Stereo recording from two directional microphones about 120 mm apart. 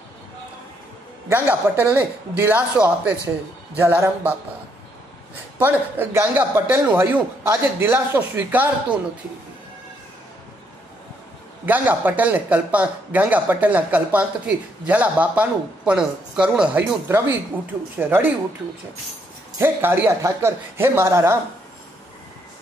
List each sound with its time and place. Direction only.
1.3 s speech: 15° right (ahead or behind)
5.6 s speech: 15° right (ahead or behind)
11.6 s speech: 15° right (ahead or behind)
17.9 s speech: 15° right (ahead or behind)
19.6 s speech: 20° right (ahead or behind)